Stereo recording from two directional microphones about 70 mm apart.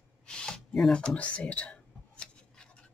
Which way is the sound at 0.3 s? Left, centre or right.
Centre.